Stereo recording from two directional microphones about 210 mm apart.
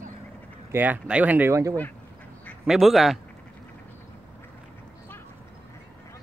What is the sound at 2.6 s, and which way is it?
Speech, centre (ahead or behind).